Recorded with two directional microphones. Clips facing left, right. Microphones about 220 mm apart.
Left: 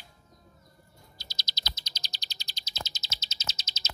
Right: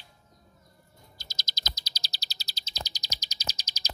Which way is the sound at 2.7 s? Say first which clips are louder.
Right 1 dB; 15° right (ahead or behind).